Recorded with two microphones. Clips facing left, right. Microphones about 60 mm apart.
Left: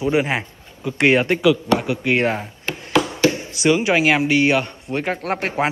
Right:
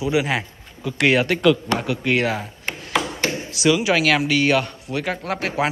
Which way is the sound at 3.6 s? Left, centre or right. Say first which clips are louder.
Left 2 dB; left.